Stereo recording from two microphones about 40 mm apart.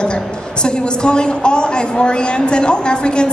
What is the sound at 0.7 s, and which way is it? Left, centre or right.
A man's voice, left.